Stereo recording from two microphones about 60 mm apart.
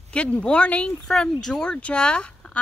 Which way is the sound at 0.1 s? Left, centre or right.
Left.